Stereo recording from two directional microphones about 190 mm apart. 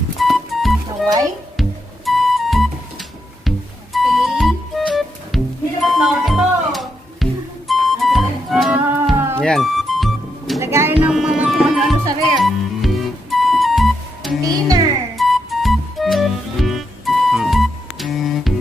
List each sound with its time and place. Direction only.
0.2 s music: centre (ahead or behind)
0.8 s music: 20° right (ahead or behind)
1.6 s music: centre (ahead or behind)
10.6 s music: 15° right (ahead or behind)